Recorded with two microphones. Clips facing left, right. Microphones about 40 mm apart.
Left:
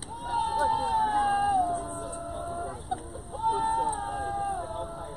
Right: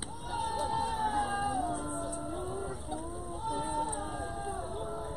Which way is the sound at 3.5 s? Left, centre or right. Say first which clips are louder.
Left 8 dB; left.